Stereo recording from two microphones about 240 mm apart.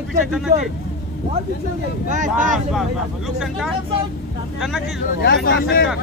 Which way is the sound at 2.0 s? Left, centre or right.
Right.